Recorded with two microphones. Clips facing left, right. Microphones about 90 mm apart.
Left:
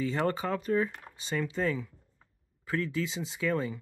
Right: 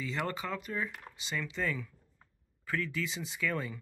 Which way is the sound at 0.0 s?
35° left (ahead or behind).